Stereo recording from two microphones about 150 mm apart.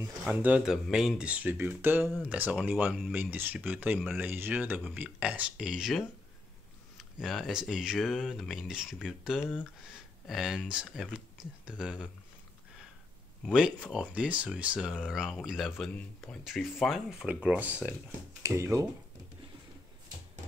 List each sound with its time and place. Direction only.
0.3 s speech: 10° right (ahead or behind)
3.1 s speech: 10° right (ahead or behind)
9.4 s speech: 10° left (ahead or behind)
10.2 s speech: centre (ahead or behind)
13.4 s speech: 5° right (ahead or behind)